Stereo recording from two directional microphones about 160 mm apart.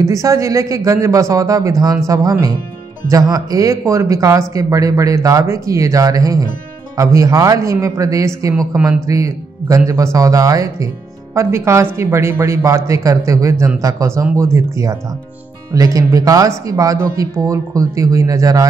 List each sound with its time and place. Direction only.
0.0 s speech: 20° right (ahead or behind)